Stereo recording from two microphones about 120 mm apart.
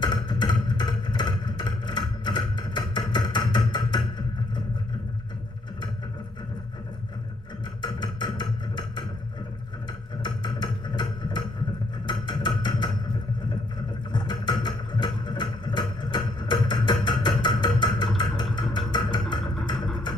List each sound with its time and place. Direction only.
0.0 s vehicle: 40° left (ahead or behind)
7.8 s music: 40° left (ahead or behind)
10.2 s music: 40° left (ahead or behind)
12.1 s percussion: 40° left (ahead or behind)
14.1 s vehicle: 40° left (ahead or behind)